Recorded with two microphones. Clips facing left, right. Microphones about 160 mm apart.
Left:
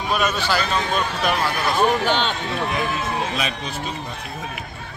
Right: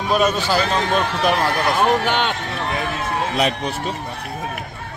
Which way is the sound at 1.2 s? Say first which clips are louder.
Right 3 dB; 45° right (ahead or behind).